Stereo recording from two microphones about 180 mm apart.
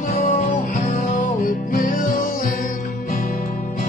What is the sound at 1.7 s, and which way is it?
Music, 50° left (ahead or behind).